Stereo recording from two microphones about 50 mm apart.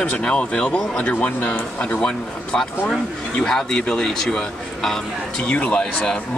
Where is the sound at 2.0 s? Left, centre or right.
Centre.